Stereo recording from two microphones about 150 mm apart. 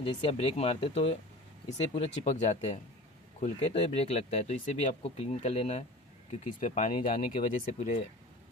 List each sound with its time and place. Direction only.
0.0 s speech: 40° left (ahead or behind)